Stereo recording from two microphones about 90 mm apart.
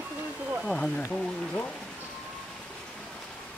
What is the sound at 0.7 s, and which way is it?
Speech, 10° left (ahead or behind).